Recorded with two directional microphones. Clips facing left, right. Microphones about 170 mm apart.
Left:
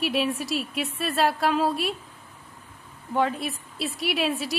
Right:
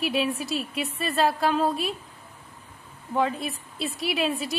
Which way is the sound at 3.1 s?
Centre (ahead or behind).